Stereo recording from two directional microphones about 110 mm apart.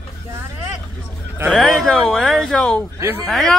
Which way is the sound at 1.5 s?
Centre (ahead or behind).